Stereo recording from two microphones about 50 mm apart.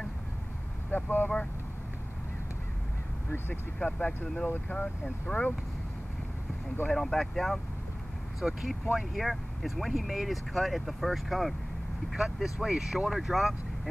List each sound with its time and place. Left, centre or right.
0.8 s speech: left
3.8 s speech: left
6.9 s speech: centre